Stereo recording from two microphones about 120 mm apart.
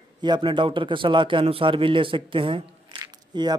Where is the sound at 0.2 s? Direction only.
40° right (ahead or behind).